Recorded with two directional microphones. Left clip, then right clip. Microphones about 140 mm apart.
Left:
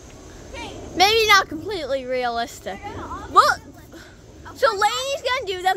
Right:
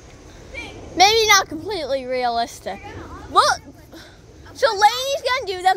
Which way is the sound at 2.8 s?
20° left (ahead or behind).